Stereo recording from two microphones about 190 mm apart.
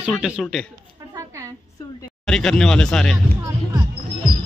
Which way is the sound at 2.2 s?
5° left (ahead or behind).